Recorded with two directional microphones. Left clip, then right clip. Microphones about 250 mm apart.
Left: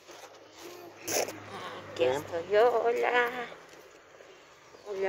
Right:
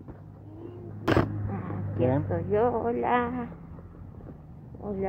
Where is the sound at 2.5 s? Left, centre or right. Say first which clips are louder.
Left 2 dB; centre.